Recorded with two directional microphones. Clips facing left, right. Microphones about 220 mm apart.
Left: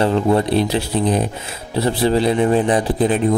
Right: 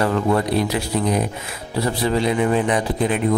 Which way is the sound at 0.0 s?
25° left (ahead or behind).